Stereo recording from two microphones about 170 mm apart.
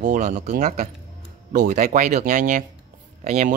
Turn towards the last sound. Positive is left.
turn(degrees=-40)  # may be behind; listen again after turning